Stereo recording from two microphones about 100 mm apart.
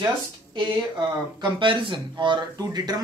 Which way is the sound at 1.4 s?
55° right (ahead or behind).